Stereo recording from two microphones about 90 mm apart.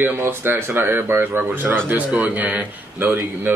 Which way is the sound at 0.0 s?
25° right (ahead or behind).